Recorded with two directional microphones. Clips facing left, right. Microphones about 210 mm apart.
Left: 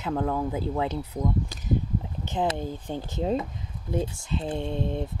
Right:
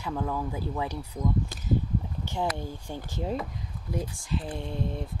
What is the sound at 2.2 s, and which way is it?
Speech, 20° left (ahead or behind).